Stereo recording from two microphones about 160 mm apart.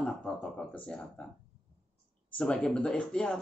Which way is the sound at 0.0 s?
5° left (ahead or behind).